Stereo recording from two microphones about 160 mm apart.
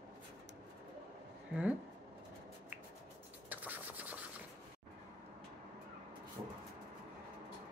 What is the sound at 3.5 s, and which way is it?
Scratch, 10° right (ahead or behind).